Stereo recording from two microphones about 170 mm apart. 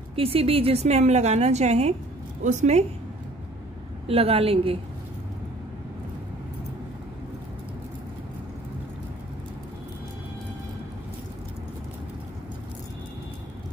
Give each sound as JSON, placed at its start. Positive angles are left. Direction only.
{"t": 0.1, "sound": "a woman's voice", "side_deg": -35}
{"t": 4.1, "sound": "a woman's voice", "side_deg": -35}